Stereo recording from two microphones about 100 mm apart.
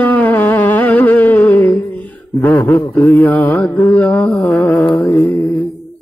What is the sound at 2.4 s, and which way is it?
Mantra, 20° left (ahead or behind).